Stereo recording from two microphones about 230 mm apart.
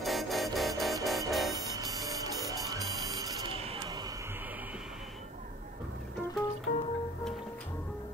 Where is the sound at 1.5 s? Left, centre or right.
Centre.